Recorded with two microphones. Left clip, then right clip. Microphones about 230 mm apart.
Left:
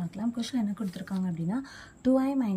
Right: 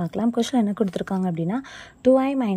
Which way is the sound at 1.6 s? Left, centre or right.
Centre.